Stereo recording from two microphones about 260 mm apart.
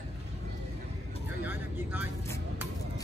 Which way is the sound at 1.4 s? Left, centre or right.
Centre.